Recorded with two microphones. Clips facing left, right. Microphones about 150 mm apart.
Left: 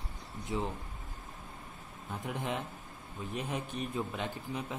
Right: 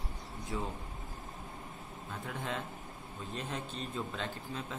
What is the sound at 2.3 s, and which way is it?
Speech, 15° left (ahead or behind).